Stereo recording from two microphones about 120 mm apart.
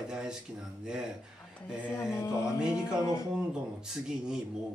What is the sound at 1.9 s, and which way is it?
Mantra, 20° left (ahead or behind).